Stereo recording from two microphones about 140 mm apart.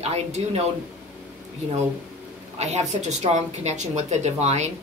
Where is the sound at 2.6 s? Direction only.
55° right (ahead or behind).